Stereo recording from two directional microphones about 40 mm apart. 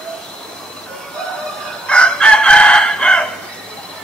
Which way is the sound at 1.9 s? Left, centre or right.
Left.